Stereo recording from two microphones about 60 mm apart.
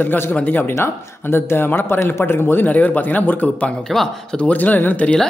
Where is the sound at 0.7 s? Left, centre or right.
Left.